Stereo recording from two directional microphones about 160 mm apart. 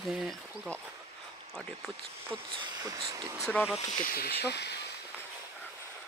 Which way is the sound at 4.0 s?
70° left (ahead or behind).